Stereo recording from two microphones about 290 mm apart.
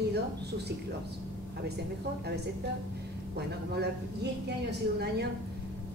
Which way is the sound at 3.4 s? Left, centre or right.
Right.